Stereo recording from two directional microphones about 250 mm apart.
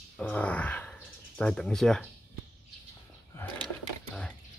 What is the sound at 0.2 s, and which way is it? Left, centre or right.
Speech, centre.